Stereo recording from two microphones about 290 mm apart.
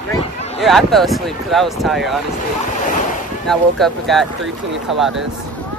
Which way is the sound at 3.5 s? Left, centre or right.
Centre.